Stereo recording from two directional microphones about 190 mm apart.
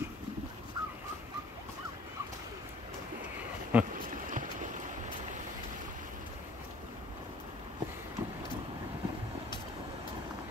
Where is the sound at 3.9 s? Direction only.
45° right (ahead or behind).